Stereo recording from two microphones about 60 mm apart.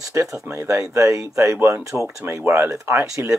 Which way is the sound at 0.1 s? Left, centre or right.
Right.